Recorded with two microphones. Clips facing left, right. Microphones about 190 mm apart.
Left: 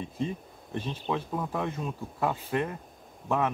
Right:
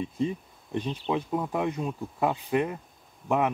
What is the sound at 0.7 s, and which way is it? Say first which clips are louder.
Speech: right 3 dB; 15° right (ahead or behind).